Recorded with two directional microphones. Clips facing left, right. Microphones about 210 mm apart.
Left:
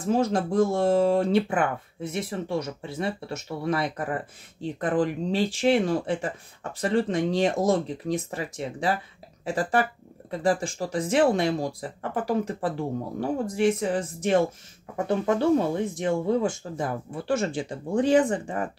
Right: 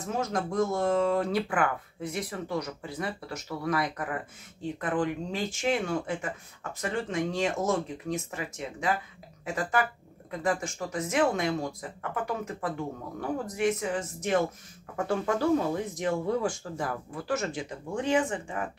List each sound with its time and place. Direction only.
0.0 s speech: 30° left (ahead or behind)
15.0 s speech: 20° left (ahead or behind); by 18.7 s 40° left (ahead or behind)